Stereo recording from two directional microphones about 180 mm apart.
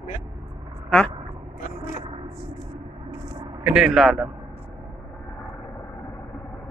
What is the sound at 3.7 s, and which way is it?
Speech, 5° right (ahead or behind).